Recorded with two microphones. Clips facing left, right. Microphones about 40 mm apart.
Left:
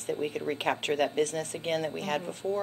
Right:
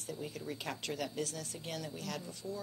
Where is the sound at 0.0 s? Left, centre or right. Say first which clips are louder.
Left 11 dB; left.